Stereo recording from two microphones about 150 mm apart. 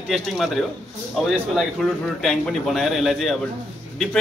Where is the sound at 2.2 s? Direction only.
Centre (ahead or behind).